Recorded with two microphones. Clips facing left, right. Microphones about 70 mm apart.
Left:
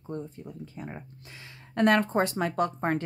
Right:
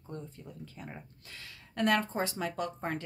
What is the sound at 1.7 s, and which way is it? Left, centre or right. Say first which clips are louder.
Speech: left 6 dB; left.